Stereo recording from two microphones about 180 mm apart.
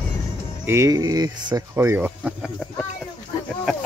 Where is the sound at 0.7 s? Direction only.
20° right (ahead or behind).